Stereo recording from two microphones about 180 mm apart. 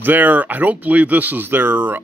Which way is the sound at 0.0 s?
10° right (ahead or behind).